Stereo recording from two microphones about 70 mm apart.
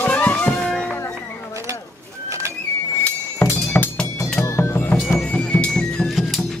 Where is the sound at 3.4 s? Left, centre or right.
Left.